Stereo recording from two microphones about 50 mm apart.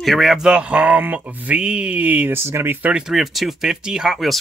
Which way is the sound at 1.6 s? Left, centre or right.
Right.